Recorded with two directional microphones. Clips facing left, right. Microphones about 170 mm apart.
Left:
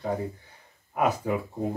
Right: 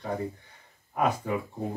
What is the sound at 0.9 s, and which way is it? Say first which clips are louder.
Speech: left 2 dB; 5° left (ahead or behind).